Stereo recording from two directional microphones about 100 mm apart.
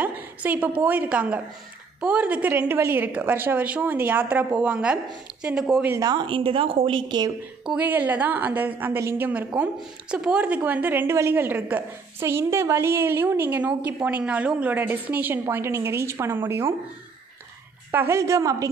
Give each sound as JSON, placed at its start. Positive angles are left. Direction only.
{"t": 0.0, "sound": "a woman's voice", "side_deg": -15}
{"t": 5.9, "sound": "a woman's voice", "side_deg": -40}
{"t": 6.2, "sound": "a woman's voice", "side_deg": -60}
{"t": 7.6, "sound": "a woman's voice", "side_deg": -15}
{"t": 10.1, "sound": "a woman's voice", "side_deg": -10}
{"t": 17.9, "sound": "a woman's voice", "side_deg": -25}